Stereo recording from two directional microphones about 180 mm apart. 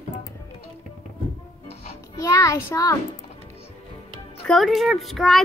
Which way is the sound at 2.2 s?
20° left (ahead or behind).